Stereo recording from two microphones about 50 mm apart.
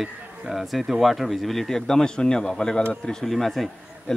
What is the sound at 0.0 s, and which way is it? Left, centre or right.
Speech, centre.